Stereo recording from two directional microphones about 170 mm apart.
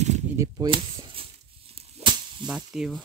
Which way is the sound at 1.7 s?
30° right (ahead or behind).